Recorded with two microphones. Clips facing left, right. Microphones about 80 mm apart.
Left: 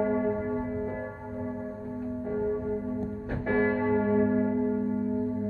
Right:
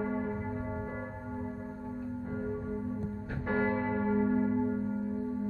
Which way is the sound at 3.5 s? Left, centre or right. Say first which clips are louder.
Left 5 dB; left.